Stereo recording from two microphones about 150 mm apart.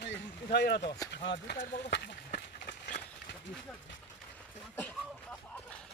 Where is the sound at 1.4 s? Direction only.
85° left.